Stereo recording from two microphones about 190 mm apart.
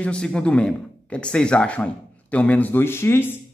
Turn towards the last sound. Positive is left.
turn(degrees=10)  # may be behind; listen again after turning